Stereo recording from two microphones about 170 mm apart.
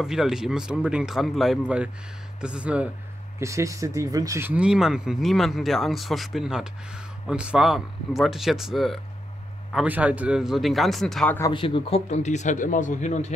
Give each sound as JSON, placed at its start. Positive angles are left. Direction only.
{"t": 0.0, "sound": "speech", "side_deg": -5}
{"t": 11.5, "sound": "speech", "side_deg": 30}